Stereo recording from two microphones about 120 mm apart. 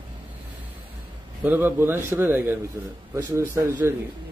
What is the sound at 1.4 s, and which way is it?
A man's voice, 15° right (ahead or behind).